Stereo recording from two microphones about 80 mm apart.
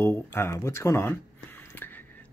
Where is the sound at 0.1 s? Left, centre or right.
Left.